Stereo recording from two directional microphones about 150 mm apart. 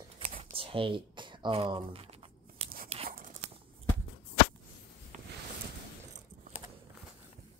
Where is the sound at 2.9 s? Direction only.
40° right (ahead or behind).